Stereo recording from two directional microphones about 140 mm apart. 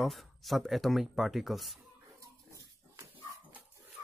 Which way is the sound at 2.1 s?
25° right (ahead or behind).